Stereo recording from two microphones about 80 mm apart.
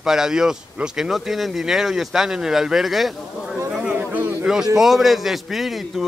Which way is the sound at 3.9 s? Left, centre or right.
Right.